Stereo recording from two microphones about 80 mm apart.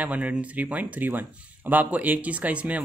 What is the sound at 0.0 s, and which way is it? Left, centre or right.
Speech, centre.